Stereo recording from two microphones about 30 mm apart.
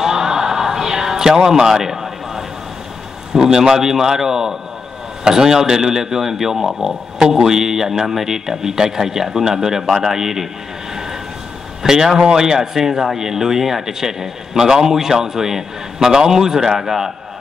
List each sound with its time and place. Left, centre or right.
0.0 s a sound: centre
3.3 s speech: centre
11.8 s speech: centre